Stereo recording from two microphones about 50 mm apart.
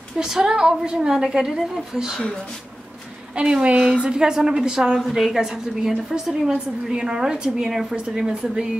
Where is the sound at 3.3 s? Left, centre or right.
Centre.